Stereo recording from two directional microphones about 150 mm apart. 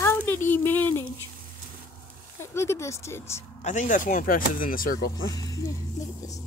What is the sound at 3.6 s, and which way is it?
Speech, 55° left (ahead or behind).